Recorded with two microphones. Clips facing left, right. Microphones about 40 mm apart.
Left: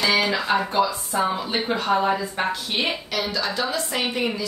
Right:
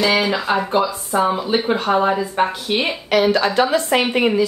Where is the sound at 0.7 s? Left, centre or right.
Right.